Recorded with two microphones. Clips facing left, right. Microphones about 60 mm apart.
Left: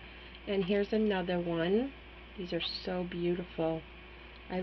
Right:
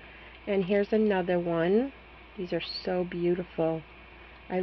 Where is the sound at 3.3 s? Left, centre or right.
Centre.